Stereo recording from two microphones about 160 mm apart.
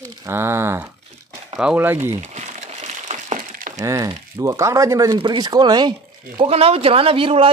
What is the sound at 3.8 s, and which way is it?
Speech, 20° right (ahead or behind).